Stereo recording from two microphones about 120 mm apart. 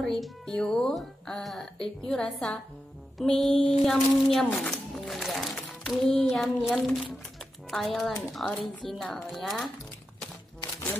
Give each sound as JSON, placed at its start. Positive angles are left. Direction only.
{"t": 0.0, "sound": "speech", "side_deg": 5}